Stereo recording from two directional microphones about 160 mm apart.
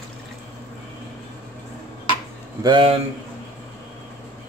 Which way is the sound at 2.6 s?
30° right (ahead or behind).